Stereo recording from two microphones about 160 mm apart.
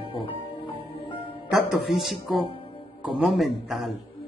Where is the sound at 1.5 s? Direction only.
Centre (ahead or behind).